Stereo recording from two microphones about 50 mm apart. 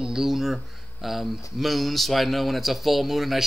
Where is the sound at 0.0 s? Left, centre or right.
Centre.